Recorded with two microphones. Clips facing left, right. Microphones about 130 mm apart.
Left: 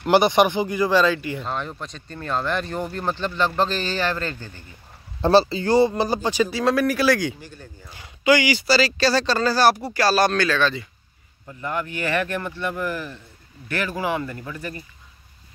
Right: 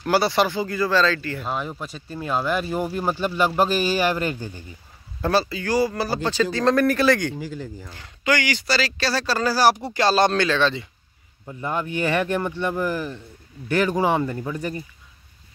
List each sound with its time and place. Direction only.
0.0 s speech: 20° left (ahead or behind)
1.4 s speech: 5° right (ahead or behind)
5.2 s speech: 30° left (ahead or behind); by 12.6 s 20° right (ahead or behind)
13.8 s speech: 25° right (ahead or behind)